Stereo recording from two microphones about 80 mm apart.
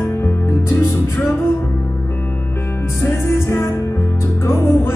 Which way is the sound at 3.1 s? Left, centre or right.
Left.